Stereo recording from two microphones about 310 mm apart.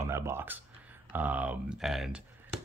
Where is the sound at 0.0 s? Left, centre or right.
Centre.